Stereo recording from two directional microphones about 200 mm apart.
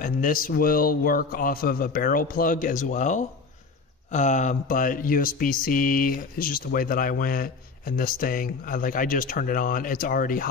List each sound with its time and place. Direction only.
0.0 s speech: 45° left (ahead or behind)